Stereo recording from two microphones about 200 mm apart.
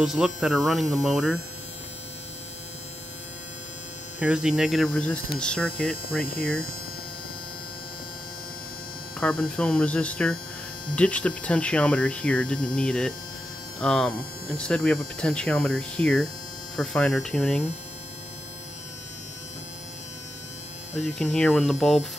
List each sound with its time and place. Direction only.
0.0 s hum: centre (ahead or behind)
4.2 s hum: 5° right (ahead or behind)
6.2 s hum: 50° left (ahead or behind)
9.2 s hum: 5° left (ahead or behind)
12.5 s hum: 45° left (ahead or behind)
12.8 s hum: 5° left (ahead or behind)
21.1 s hum: centre (ahead or behind)